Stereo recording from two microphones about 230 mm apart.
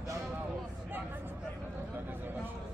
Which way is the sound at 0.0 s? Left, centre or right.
Centre.